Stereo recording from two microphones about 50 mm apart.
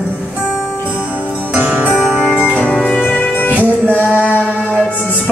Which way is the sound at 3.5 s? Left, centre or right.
Right.